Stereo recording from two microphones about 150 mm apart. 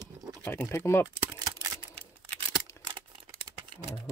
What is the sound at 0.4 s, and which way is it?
Speech, 15° left (ahead or behind).